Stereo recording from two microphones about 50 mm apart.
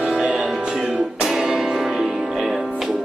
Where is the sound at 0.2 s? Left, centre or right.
Centre.